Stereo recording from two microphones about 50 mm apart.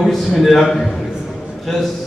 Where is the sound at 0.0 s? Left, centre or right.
Centre.